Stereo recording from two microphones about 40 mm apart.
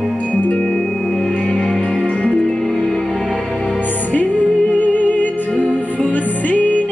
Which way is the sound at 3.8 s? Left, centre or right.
Left.